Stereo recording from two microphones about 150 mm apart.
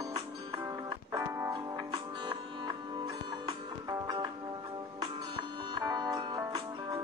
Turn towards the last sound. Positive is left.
turn(degrees=-25)  # may be behind; listen again after turning